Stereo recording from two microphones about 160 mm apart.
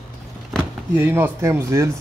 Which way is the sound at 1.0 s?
15° right (ahead or behind).